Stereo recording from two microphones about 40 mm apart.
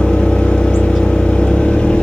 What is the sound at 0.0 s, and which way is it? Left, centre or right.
Vehicle, left.